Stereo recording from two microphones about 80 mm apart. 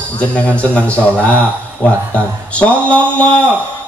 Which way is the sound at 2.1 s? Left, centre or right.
Centre.